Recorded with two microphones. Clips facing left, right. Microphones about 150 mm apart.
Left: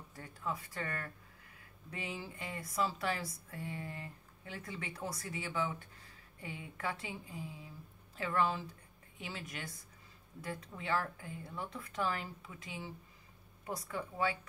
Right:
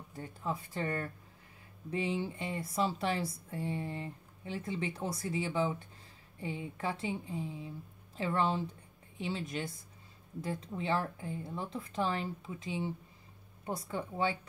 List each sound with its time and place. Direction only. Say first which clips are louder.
0.1 s a woman's voice: right 3 dB; 25° right (ahead or behind)